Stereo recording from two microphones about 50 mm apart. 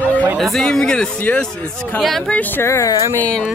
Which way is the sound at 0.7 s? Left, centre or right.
Centre.